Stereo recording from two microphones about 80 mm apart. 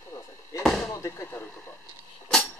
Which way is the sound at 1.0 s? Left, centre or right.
Left.